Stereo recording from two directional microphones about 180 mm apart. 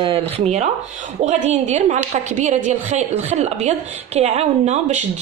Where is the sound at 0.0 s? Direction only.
30° right (ahead or behind).